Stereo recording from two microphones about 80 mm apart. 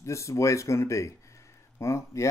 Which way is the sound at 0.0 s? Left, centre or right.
Left.